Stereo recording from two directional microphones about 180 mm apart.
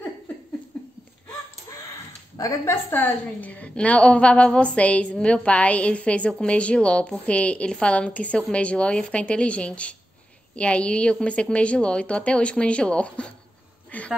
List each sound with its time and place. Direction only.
2.3 s a woman's voice: 15° left (ahead or behind)